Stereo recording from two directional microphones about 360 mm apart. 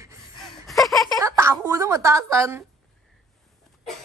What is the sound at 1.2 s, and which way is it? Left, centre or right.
A woman's voice, centre.